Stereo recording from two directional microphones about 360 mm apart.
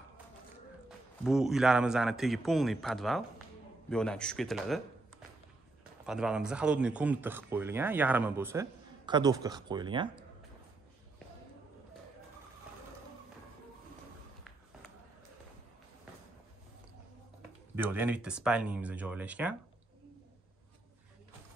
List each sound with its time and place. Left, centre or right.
0.8 s speech: centre
6.0 s speech: centre
17.7 s speech: centre